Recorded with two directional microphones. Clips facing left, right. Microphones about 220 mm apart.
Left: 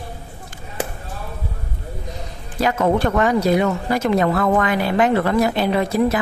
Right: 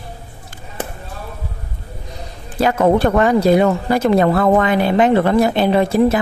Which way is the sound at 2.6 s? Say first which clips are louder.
Right 4 dB; 30° right (ahead or behind).